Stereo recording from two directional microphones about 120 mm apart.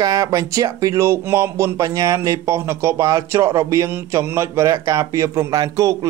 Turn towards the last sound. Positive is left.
turn(degrees=-30)  # may be behind; listen again after turning